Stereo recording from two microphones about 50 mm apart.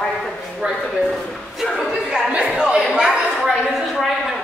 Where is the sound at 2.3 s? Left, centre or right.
Right.